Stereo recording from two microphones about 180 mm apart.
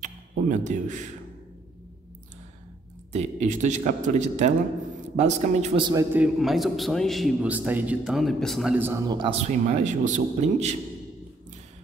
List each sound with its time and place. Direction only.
0.0 s a sound: 45° right (ahead or behind)
3.1 s a man's voice: 40° right (ahead or behind)
5.8 s a man's voice: 25° right (ahead or behind)
6.1 s a man's voice: 5° right (ahead or behind)
8.7 s a man's voice: 15° right (ahead or behind)
9.3 s a man's voice: 35° right (ahead or behind)